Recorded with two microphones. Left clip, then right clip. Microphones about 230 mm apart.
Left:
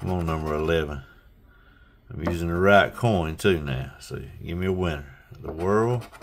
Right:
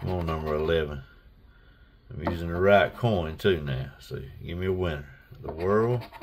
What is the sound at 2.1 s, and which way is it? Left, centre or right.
Speech, centre.